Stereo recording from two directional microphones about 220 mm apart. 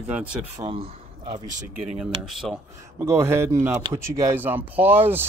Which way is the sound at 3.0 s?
10° right (ahead or behind).